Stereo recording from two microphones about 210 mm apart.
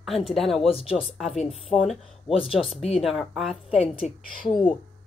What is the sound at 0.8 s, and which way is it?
Speech, 25° left (ahead or behind).